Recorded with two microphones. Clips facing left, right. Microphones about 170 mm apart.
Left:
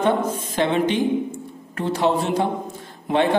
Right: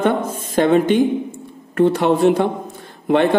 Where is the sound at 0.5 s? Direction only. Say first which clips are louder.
Right 7 dB; 45° right (ahead or behind).